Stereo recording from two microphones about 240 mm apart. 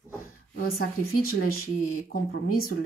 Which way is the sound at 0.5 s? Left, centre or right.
Left.